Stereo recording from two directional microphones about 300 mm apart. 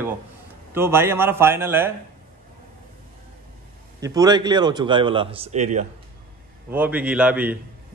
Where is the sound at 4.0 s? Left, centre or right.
Centre.